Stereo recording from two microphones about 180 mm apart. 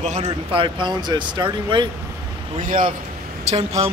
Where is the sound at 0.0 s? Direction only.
35° right (ahead or behind).